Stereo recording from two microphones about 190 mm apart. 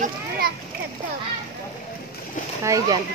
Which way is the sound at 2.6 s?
15° right (ahead or behind).